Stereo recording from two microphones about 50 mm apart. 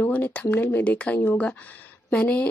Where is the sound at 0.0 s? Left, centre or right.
Left.